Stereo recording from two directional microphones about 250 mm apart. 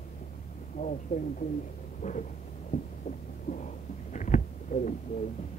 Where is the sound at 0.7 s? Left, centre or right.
Left.